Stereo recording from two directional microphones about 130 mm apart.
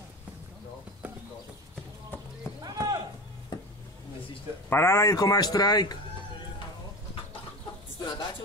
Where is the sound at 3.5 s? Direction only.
35° left (ahead or behind).